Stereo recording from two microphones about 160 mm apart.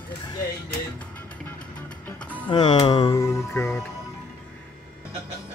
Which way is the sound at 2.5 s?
30° left (ahead or behind).